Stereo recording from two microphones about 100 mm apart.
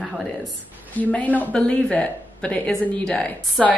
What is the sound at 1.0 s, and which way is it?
A woman's voice, 15° left (ahead or behind).